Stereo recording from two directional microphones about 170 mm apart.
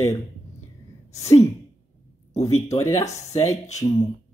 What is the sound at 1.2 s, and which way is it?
Speech, 40° left (ahead or behind).